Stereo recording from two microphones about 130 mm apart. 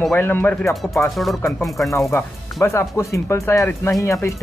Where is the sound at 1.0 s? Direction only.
Centre (ahead or behind).